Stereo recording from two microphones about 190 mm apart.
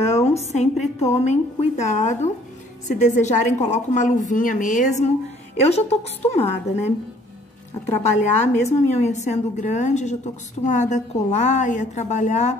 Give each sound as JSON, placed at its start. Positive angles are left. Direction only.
{"t": 0.0, "sound": "a woman's voice", "side_deg": 35}
{"t": 8.0, "sound": "a woman's voice", "side_deg": 35}